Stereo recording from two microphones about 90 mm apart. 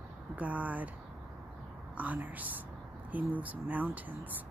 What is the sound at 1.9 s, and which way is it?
A woman's voice, 15° right (ahead or behind).